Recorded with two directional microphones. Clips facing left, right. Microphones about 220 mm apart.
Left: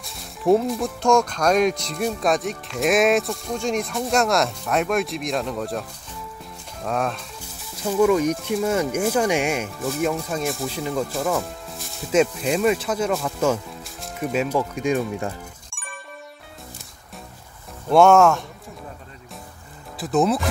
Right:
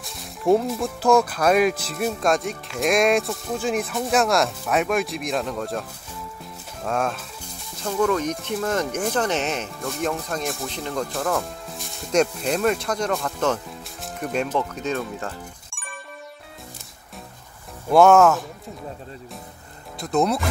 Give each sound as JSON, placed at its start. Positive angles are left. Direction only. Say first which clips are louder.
{"t": 0.0, "sound": "speech", "louder": "left 1 dB", "side_deg": 0}
{"t": 15.7, "sound": "music", "louder": "even", "side_deg": 0}
{"t": 17.8, "sound": "speech", "louder": "even", "side_deg": 0}
{"t": 20.0, "sound": "speech", "louder": "left 2 dB", "side_deg": 0}